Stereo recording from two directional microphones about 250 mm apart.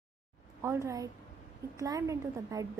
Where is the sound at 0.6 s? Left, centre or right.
Centre.